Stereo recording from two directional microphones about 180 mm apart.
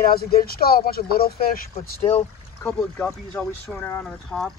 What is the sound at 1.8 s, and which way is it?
Speech, 35° left (ahead or behind).